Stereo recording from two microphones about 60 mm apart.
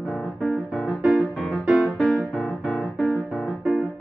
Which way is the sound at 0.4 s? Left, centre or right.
Centre.